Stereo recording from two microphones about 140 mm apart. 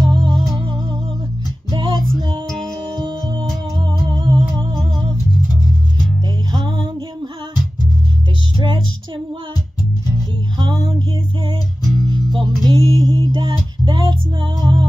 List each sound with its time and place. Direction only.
0.0 s music: 35° right (ahead or behind)
1.7 s music: 35° right (ahead or behind)
6.5 s music: 35° right (ahead or behind)
8.5 s music: 35° right (ahead or behind)
10.6 s music: 30° right (ahead or behind)
12.1 s music: 35° right (ahead or behind)